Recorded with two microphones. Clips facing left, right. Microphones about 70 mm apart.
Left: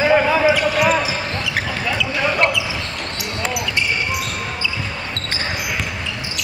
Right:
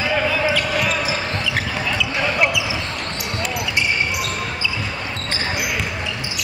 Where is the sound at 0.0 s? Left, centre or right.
Left.